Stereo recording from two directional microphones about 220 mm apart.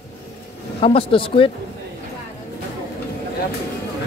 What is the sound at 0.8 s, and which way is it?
Speech, 25° left (ahead or behind).